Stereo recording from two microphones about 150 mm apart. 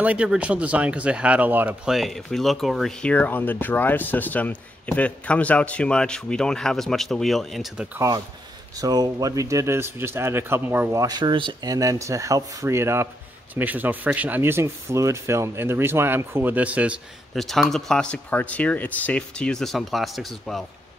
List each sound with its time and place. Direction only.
0.0 s speech: 10° right (ahead or behind)
8.7 s speech: 25° right (ahead or behind); by 17.0 s 10° right (ahead or behind)
17.3 s speech: centre (ahead or behind)